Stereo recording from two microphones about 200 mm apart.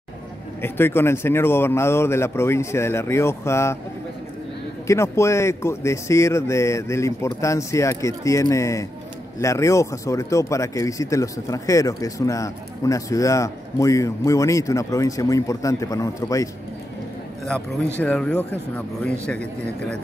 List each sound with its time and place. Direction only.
0.6 s speech: 10° left (ahead or behind)
4.8 s speech: 15° left (ahead or behind)
18.0 s speech: 5° left (ahead or behind)